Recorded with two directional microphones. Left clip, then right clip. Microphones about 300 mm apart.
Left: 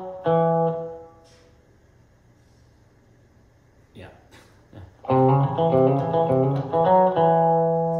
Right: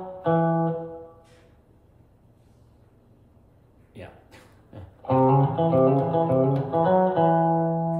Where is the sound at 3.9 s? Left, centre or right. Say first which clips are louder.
Right 1 dB; centre.